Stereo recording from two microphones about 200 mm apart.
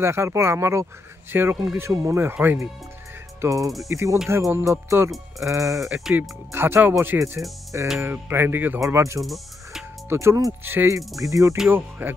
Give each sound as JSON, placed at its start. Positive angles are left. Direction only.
{"t": 0.0, "sound": "speech", "side_deg": -15}
{"t": 5.9, "sound": "speech", "side_deg": -5}
{"t": 9.2, "sound": "music", "side_deg": 0}
{"t": 10.0, "sound": "speech", "side_deg": -15}
{"t": 11.5, "sound": "speech", "side_deg": -5}